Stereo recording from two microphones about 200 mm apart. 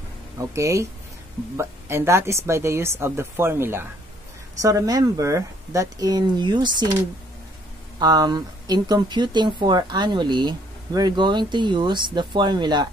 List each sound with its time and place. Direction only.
0.6 s speech: 15° right (ahead or behind)
8.0 s speech: 20° right (ahead or behind)